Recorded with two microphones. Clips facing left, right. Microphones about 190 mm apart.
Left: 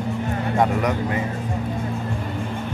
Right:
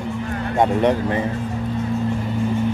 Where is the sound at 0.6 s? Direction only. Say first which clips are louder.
Right 5 dB; 30° right (ahead or behind).